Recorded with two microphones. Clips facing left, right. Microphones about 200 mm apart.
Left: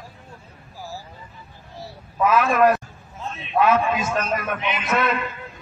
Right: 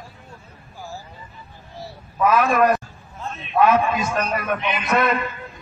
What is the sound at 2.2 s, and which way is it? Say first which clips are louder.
Speech: even; 45° right (ahead or behind).